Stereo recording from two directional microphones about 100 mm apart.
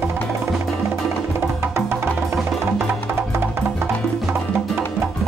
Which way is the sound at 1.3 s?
25° right (ahead or behind).